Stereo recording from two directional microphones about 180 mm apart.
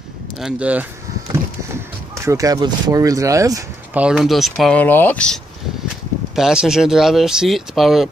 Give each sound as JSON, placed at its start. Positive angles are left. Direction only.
{"t": 0.4, "sound": "speech", "side_deg": -5}
{"t": 2.1, "sound": "speech", "side_deg": -20}
{"t": 4.0, "sound": "speech", "side_deg": -5}